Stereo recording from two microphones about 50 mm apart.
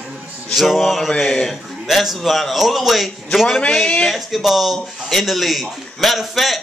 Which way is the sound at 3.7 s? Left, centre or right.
Centre.